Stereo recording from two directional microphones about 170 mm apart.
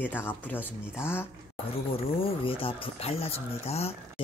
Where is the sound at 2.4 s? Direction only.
30° left (ahead or behind).